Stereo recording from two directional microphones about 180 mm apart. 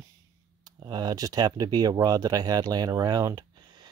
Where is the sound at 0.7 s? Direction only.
25° right (ahead or behind).